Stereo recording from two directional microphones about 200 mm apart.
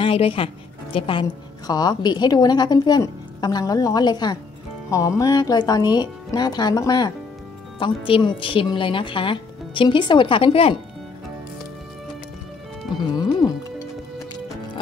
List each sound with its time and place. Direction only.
0.0 s speech: 25° left (ahead or behind)
13.1 s music: 15° left (ahead or behind)